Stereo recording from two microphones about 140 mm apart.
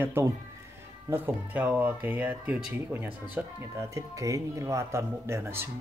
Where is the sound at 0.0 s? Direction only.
15° right (ahead or behind).